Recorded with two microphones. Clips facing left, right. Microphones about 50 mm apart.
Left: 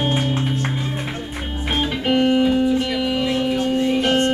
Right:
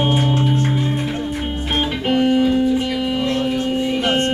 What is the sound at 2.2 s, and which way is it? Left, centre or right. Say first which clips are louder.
Music: right 2 dB; centre.